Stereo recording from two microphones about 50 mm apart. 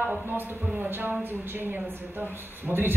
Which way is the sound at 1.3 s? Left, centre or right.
Right.